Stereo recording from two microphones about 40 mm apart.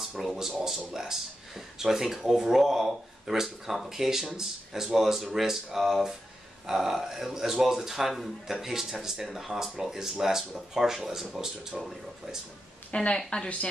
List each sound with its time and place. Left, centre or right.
0.0 s speech: centre
12.9 s speech: left